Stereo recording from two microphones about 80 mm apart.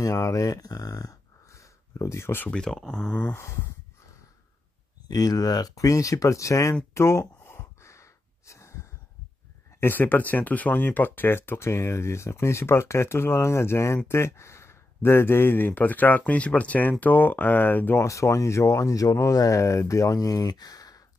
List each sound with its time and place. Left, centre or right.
0.0 s speech: left
2.5 s speech: centre
5.0 s a sound: left
9.8 s speech: left
18.0 s speech: left